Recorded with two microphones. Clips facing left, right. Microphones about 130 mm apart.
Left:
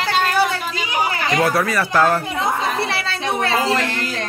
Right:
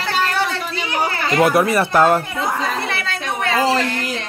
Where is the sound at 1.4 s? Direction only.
20° right (ahead or behind).